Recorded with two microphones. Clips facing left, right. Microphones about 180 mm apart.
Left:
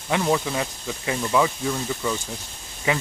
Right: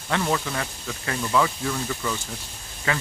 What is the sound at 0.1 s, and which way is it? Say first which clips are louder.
Speech: left 3 dB; 15° left (ahead or behind).